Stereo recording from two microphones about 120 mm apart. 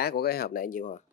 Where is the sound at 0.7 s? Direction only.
90° left.